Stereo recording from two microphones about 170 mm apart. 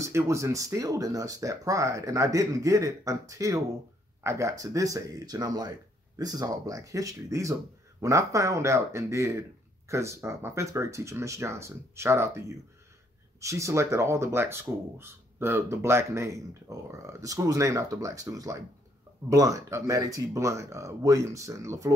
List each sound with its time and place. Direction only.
0.0 s speech: 20° right (ahead or behind)